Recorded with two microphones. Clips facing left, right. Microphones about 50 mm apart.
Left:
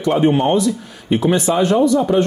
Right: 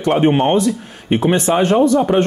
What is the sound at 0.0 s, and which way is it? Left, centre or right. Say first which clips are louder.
Speech: right 1 dB; right.